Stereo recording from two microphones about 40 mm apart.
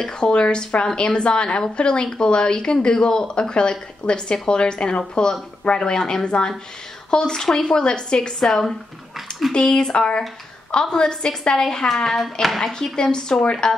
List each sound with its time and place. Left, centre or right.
0.0 s a woman's voice: left
12.2 s speech: centre
12.7 s speech: centre